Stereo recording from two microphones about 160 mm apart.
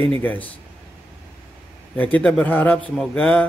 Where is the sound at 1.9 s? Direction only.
10° left (ahead or behind).